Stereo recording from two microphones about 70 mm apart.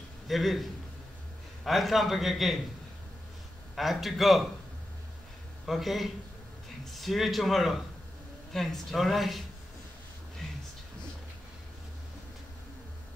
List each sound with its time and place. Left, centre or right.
0.3 s a man's voice: centre
3.7 s a man's voice: centre
5.7 s a man's voice: centre